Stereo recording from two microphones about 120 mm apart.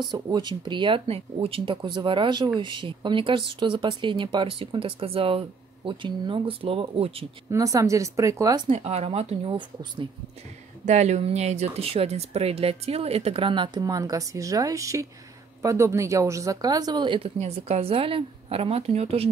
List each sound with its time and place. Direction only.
0.1 s speech: 35° right (ahead or behind); by 7.2 s 50° right (ahead or behind)
7.5 s speech: 30° right (ahead or behind)
8.6 s speech: 60° right (ahead or behind)
9.5 s speech: 40° right (ahead or behind)
10.9 s speech: 70° right (ahead or behind); by 17.3 s 45° right (ahead or behind)
17.4 s speech: 60° right (ahead or behind)